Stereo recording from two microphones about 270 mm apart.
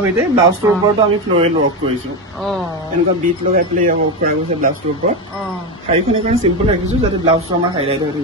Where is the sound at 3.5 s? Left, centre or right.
Right.